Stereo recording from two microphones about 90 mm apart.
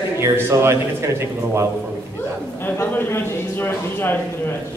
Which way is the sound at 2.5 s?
25° left (ahead or behind).